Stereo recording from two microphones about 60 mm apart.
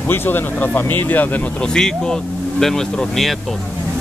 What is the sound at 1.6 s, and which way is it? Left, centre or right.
Speech, centre.